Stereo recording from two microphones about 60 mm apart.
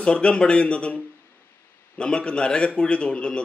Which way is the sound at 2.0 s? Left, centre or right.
Centre.